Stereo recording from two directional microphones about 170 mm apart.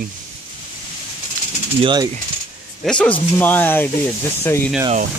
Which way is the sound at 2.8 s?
5° left (ahead or behind).